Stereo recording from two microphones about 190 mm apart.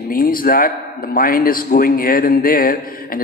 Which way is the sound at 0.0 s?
50° left (ahead or behind).